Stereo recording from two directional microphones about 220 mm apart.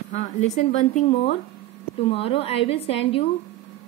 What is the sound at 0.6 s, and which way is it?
Speech, 30° left (ahead or behind).